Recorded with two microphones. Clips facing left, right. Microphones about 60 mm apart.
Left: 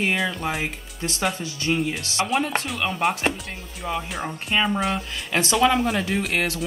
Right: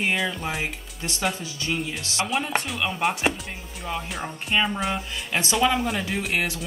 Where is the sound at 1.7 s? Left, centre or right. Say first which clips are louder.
Left 5 dB; left.